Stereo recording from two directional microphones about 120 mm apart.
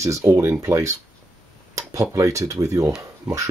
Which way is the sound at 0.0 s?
25° right (ahead or behind).